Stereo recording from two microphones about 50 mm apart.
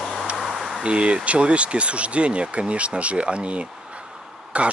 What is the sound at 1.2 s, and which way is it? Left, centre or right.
Speech, right.